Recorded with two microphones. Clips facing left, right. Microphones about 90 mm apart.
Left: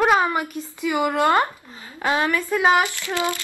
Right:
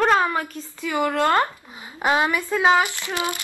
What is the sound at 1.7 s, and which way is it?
Speech, 15° right (ahead or behind).